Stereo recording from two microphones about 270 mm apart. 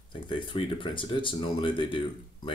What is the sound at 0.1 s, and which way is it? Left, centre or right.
Speech, centre.